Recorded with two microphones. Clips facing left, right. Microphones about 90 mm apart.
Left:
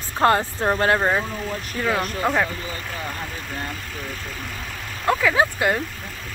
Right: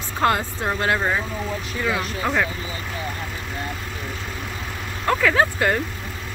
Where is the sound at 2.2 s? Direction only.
25° left (ahead or behind).